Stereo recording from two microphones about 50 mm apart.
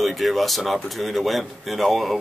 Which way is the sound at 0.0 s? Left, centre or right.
Centre.